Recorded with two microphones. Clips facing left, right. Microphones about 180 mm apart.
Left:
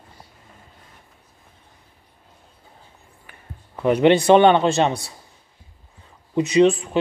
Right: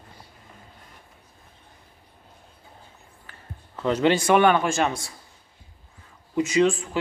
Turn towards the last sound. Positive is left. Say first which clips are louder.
# left 5 dB
turn(degrees=20)  # may be behind; listen again after turning